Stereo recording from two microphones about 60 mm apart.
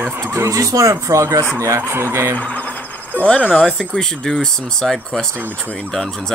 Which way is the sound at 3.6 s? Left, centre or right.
Centre.